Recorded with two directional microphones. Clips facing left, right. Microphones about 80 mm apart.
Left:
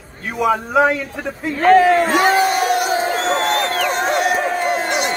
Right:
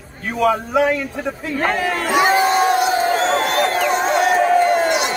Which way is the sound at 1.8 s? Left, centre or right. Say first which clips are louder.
Left 8 dB; left.